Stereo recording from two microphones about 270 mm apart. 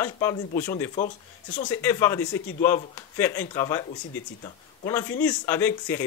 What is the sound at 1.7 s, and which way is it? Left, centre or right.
A man's voice, centre.